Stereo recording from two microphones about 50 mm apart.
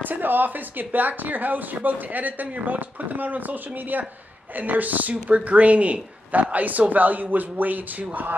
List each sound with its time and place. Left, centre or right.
0.0 s speech: right